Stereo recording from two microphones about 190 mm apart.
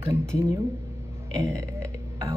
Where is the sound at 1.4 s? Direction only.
15° right (ahead or behind).